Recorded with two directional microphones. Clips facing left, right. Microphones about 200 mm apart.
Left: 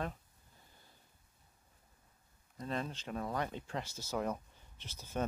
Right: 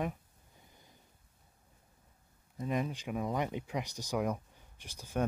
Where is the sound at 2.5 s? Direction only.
10° right (ahead or behind).